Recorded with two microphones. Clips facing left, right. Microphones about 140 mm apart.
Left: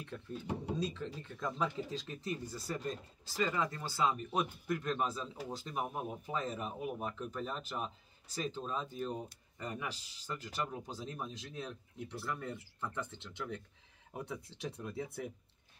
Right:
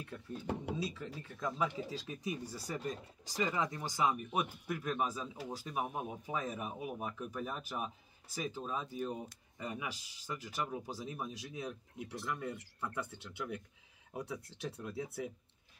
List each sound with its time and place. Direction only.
0.7 s speech: 10° right (ahead or behind)